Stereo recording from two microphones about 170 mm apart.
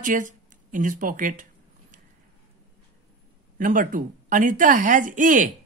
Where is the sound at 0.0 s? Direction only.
50° right (ahead or behind).